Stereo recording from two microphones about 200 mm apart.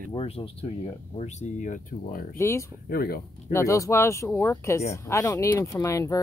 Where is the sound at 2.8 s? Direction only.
50° left (ahead or behind).